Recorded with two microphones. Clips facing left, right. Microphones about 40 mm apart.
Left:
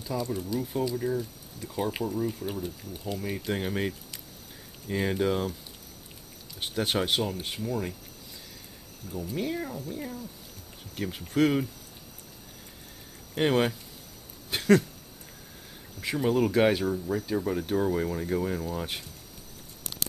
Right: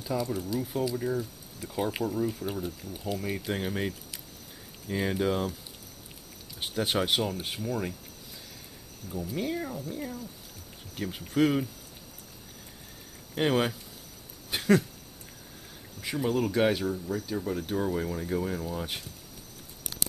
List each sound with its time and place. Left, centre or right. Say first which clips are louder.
0.0 s speech: right 1 dB; centre
6.6 s speech: even; centre
9.1 s speech: even; centre
13.3 s speech: left 2 dB; centre
14.5 s a sound: left 2 dB; centre
16.0 s speech: left 2 dB; centre
16.3 s speech: left 3 dB; centre